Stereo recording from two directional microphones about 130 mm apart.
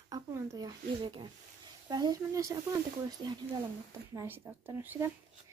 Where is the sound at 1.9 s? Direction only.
30° right (ahead or behind).